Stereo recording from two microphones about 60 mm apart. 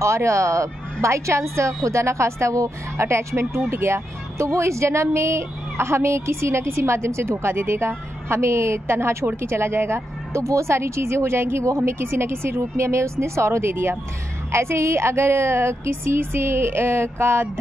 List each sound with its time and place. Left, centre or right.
0.0 s speech: right